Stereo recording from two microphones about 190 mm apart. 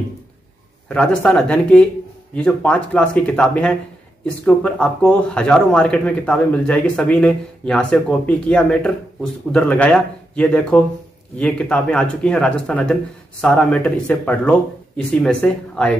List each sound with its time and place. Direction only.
0.8 s a man's voice: 5° left (ahead or behind)